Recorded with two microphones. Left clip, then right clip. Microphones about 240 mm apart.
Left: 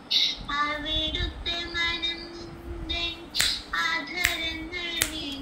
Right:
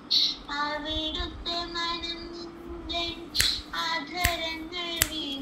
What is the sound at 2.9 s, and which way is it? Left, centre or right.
Child singing, centre.